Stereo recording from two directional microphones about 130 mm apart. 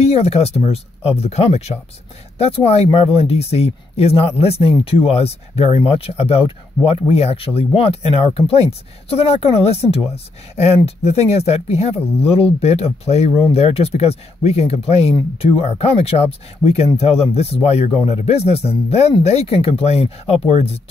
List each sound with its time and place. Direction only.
0.0 s speech: 50° left (ahead or behind)